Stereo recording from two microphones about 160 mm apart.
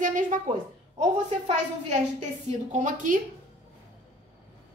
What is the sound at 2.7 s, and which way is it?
Speech, 55° right (ahead or behind).